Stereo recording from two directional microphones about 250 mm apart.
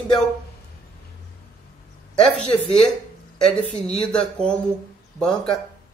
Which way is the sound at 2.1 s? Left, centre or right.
Centre.